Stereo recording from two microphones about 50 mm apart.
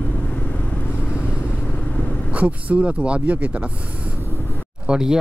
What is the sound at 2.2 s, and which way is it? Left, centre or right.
Speech, right.